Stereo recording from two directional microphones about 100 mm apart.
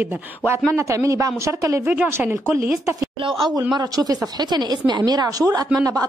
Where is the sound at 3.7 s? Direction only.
40° right (ahead or behind).